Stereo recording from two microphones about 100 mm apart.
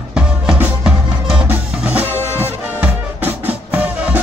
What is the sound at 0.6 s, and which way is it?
Music, 15° right (ahead or behind).